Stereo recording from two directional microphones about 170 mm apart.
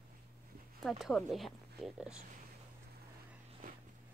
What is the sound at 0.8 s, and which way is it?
Speech, centre (ahead or behind).